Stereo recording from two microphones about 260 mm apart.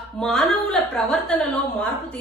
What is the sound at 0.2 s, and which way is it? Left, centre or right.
A woman's voice, centre.